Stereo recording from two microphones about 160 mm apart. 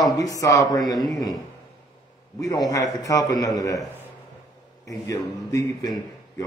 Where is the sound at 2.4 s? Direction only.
20° left (ahead or behind).